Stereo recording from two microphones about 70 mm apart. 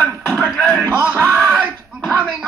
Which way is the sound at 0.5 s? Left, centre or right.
Left.